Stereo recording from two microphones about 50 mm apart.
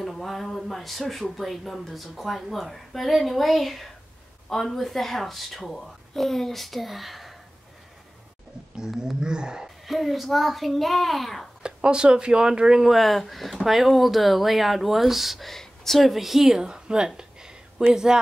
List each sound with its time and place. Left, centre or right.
0.0 s speech: centre
8.7 s speech: centre
9.8 s speech: centre
11.6 s speech: centre
12.9 s speech: centre